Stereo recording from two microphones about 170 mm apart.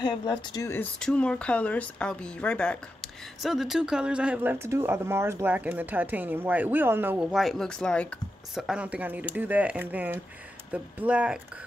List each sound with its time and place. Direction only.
0.0 s speech: 25° left (ahead or behind)
0.9 s speech: 5° left (ahead or behind)
8.5 s speech: 5° right (ahead or behind)